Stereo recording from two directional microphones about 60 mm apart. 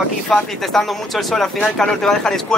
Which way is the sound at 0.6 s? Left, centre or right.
Centre.